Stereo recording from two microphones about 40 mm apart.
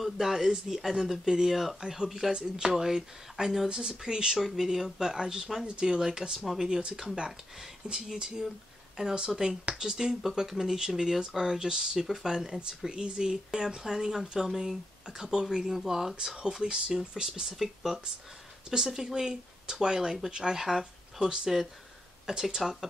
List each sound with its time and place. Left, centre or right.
0.0 s speech: centre
4.4 s speech: centre
6.4 s speech: centre
6.7 s speech: right
7.9 s speech: centre
9.0 s speech: centre